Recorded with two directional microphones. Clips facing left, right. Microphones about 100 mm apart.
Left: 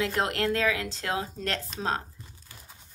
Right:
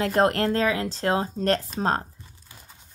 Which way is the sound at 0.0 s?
40° right (ahead or behind).